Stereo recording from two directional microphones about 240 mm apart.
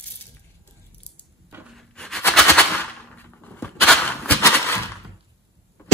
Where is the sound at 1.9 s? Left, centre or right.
Centre.